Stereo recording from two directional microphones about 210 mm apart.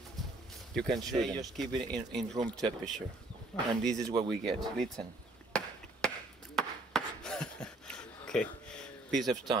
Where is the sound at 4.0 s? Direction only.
15° right (ahead or behind).